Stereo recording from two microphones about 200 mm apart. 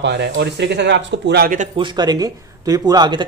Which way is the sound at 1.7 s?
20° right (ahead or behind).